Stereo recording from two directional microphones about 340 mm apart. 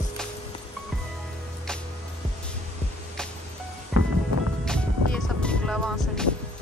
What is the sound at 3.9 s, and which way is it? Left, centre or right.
Music, centre.